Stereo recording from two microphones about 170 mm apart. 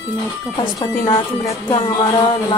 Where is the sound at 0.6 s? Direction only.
25° left (ahead or behind).